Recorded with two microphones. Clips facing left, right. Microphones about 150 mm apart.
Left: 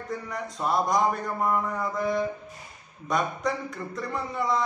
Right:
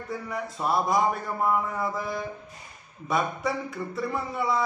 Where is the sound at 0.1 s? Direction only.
5° right (ahead or behind).